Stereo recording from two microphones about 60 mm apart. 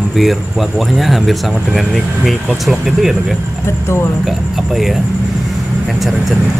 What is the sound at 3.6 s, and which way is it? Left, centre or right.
Speech, left.